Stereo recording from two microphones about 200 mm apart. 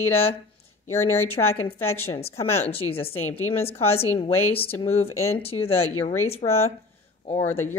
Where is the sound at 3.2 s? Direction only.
90° left.